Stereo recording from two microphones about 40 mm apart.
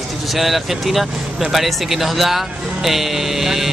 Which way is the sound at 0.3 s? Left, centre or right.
Centre.